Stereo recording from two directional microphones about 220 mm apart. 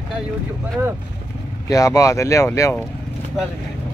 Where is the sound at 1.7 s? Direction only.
15° left (ahead or behind).